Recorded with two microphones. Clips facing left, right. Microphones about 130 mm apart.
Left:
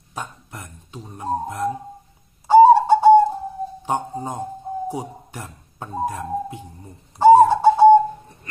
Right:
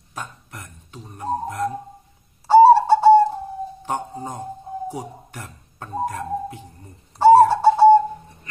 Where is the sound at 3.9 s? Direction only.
20° left (ahead or behind).